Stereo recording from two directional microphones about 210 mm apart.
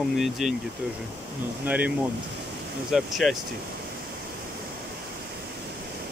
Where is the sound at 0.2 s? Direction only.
Centre (ahead or behind).